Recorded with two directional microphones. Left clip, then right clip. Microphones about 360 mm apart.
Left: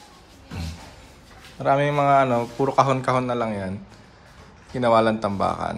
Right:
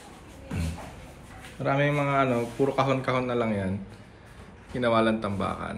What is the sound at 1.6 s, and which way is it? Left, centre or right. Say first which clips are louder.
A man's voice: left 6 dB; centre.